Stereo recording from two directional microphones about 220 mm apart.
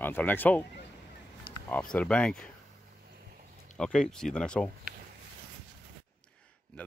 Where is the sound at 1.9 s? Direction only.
5° left (ahead or behind).